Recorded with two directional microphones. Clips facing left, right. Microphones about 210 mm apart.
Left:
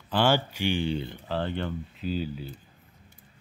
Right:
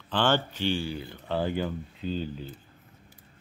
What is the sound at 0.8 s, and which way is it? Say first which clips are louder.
Speech: left 5 dB; 25° left (ahead or behind).